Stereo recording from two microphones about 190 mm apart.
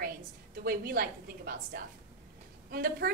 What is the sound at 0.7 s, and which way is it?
A woman's voice, 50° right (ahead or behind).